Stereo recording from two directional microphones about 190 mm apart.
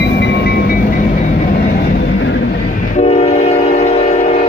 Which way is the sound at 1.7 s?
55° left (ahead or behind).